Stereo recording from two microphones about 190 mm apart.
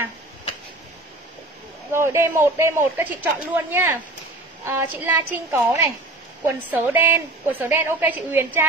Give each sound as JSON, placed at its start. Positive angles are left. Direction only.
{"t": 1.9, "sound": "a woman's voice", "side_deg": -10}